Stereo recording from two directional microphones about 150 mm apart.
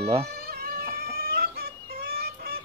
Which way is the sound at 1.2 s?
90° right.